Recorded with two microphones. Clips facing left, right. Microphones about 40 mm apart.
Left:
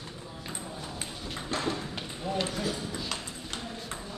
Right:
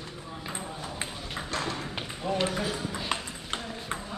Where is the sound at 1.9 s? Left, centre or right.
Right.